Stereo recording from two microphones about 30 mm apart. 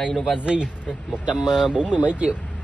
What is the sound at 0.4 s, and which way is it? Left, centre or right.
Speech, right.